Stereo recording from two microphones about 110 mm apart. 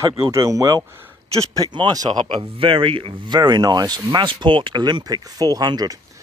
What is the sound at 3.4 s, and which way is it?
Speech, 40° right (ahead or behind).